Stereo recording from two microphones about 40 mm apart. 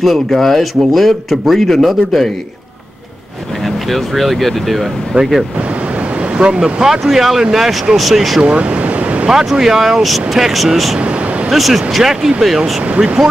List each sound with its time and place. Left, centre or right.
0.0 s speech: centre
3.6 s speech: centre
5.1 s speech: right
6.3 s speech: right
6.8 s speech: centre
8.4 s waves: right
9.2 s speech: centre
11.0 s a sound: right
11.5 s speech: centre